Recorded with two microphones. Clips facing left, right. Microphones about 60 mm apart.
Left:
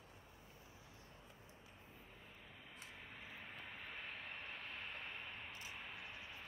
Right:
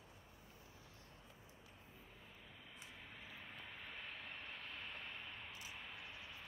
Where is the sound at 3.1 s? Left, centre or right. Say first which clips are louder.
Left 1 dB; left.